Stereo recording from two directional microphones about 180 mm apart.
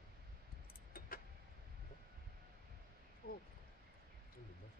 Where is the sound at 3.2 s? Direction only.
55° left (ahead or behind).